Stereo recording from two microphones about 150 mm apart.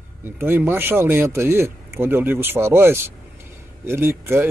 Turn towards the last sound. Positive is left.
turn(degrees=-15)  # may be behind; listen again after turning